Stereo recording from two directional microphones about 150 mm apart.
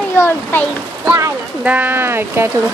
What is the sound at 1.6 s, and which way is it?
Speech, 10° right (ahead or behind).